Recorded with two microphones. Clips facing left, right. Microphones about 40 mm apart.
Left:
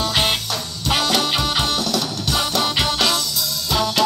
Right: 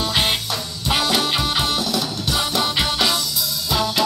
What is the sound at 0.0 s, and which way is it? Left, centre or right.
Music, centre.